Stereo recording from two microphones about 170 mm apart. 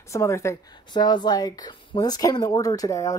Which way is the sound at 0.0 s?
15° left (ahead or behind).